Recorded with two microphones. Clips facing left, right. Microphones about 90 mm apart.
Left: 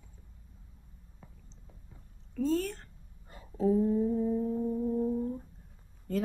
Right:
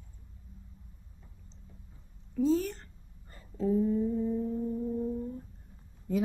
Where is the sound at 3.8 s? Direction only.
15° left (ahead or behind).